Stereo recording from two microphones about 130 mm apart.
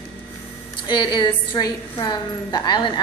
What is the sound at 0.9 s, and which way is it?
A woman's voice, 35° left (ahead or behind).